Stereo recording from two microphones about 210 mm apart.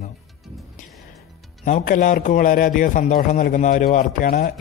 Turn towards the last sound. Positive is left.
turn(degrees=40)  # may be behind; listen again after turning